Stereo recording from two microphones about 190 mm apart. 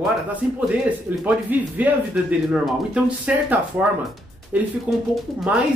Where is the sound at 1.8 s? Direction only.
5° right (ahead or behind).